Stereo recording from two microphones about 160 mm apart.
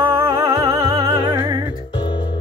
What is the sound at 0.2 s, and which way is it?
Music, 20° right (ahead or behind).